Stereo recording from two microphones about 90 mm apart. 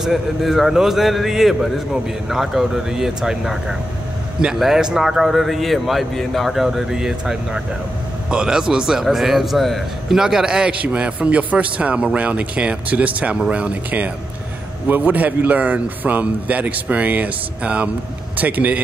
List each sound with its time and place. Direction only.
0.0 s a man's voice: centre (ahead or behind); by 18.8 s 15° right (ahead or behind)